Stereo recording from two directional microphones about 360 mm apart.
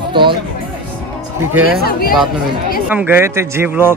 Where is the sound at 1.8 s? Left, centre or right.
Left.